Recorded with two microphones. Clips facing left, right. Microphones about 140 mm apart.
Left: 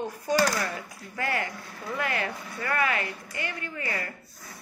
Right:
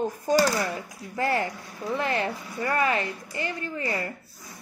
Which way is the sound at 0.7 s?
15° right (ahead or behind).